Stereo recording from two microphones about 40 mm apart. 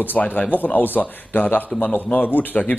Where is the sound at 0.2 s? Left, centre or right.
Left.